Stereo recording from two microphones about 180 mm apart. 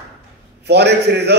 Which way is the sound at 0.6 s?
65° right (ahead or behind).